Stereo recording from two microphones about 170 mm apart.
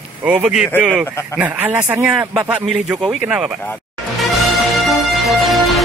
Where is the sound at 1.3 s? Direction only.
10° right (ahead or behind).